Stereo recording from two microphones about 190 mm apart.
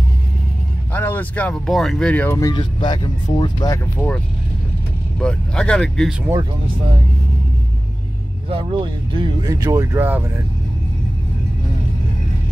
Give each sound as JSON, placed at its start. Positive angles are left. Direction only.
{"t": 0.9, "sound": "speech", "side_deg": 10}
{"t": 5.2, "sound": "speech", "side_deg": 5}
{"t": 8.5, "sound": "speech", "side_deg": -25}